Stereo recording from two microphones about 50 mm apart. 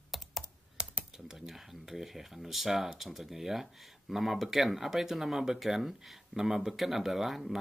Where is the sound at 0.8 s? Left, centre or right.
Right.